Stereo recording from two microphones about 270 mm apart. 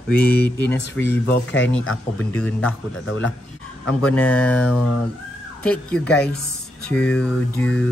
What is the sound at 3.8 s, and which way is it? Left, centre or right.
Speech, centre.